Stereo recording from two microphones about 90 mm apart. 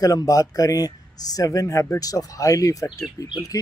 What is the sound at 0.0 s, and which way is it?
Speech, 40° left (ahead or behind).